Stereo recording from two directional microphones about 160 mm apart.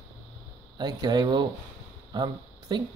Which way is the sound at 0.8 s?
25° right (ahead or behind).